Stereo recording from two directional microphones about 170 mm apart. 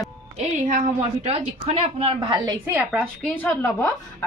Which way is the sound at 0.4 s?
40° right (ahead or behind).